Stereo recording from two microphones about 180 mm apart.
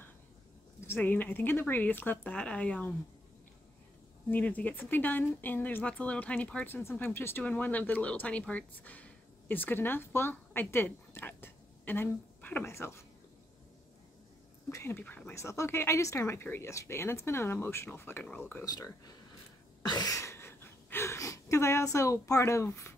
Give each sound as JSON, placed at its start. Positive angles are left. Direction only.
{"t": 0.7, "sound": "speech", "side_deg": 10}
{"t": 4.3, "sound": "speech", "side_deg": 10}
{"t": 14.7, "sound": "speech", "side_deg": 15}
{"t": 19.9, "sound": "a sound", "side_deg": 20}